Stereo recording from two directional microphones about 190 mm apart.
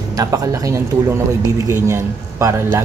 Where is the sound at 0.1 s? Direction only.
20° right (ahead or behind).